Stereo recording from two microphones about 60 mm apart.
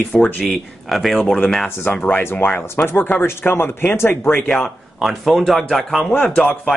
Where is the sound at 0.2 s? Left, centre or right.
Centre.